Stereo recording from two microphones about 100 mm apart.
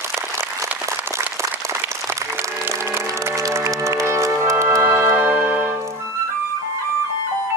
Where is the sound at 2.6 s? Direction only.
25° right (ahead or behind).